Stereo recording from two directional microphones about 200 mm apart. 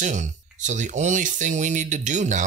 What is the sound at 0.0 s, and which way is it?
Speech, 40° right (ahead or behind).